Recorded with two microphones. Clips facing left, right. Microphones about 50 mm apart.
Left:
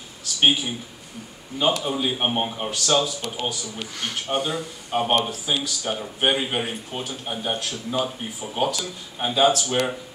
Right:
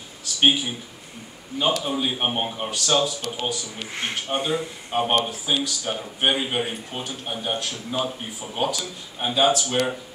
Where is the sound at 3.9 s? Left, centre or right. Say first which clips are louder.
Even; right.